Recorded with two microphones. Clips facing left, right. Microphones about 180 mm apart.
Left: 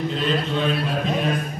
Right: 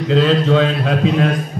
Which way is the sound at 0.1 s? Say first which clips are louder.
Right 10 dB; 90° right.